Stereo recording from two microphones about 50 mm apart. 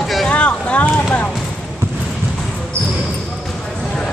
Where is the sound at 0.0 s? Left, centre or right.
Centre.